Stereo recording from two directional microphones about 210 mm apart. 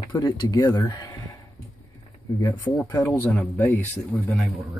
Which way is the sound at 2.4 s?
15° left (ahead or behind).